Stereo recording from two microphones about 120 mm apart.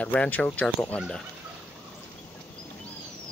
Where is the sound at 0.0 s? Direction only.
10° left (ahead or behind).